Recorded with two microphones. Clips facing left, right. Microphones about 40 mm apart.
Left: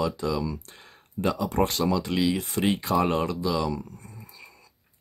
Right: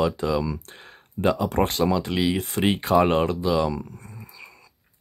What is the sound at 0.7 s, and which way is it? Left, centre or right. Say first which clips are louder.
Speech: right 4 dB; right.